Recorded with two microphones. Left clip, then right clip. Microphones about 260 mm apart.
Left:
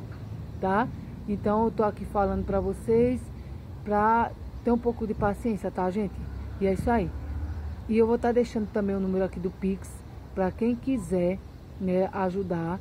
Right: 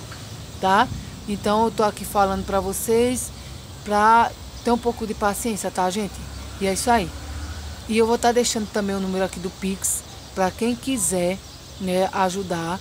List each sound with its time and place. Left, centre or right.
0.6 s speech: centre